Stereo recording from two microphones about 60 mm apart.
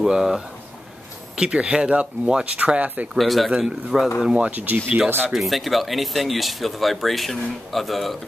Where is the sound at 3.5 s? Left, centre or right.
Centre.